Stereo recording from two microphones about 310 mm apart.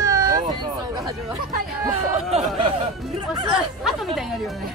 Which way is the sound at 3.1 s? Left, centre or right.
Centre.